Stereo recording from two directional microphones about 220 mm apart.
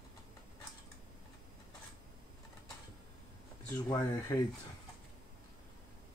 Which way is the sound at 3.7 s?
15° left (ahead or behind).